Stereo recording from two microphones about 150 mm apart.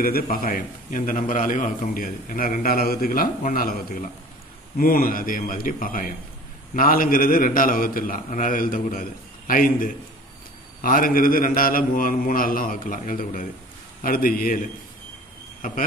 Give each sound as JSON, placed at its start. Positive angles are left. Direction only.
{"t": 0.0, "sound": "a man's voice", "side_deg": 75}